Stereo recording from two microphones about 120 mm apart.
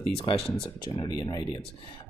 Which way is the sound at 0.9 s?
30° left (ahead or behind).